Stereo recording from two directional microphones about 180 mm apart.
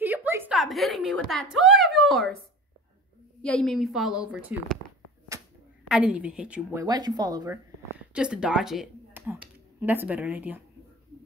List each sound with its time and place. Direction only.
0.0 s a sound: 10° right (ahead or behind)
3.4 s a woman's voice: 5° left (ahead or behind)
5.9 s a woman's voice: 5° right (ahead or behind)
6.8 s speech: 20° right (ahead or behind)
8.1 s speech: 5° right (ahead or behind)